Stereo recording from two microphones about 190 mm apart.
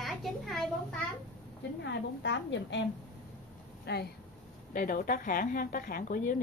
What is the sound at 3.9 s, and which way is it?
Speech, 60° left (ahead or behind).